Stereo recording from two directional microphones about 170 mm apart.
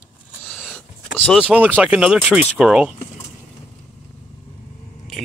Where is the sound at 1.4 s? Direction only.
10° right (ahead or behind).